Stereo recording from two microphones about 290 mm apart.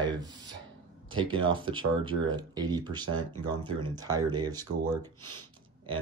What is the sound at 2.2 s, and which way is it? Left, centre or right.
Speech, centre.